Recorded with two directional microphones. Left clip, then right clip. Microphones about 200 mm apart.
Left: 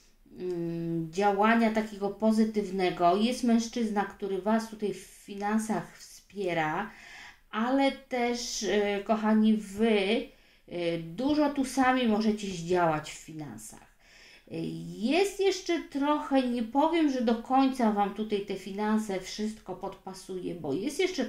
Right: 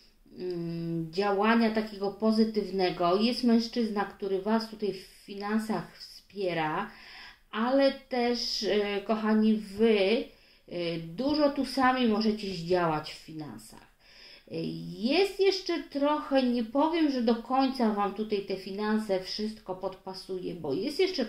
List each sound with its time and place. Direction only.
0.7 s speech: 30° left (ahead or behind)
14.5 s speech: 35° left (ahead or behind)